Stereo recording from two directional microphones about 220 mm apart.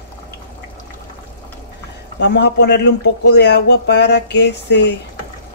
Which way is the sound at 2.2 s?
50° left (ahead or behind).